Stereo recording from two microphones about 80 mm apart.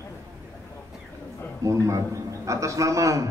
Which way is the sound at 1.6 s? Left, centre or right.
Right.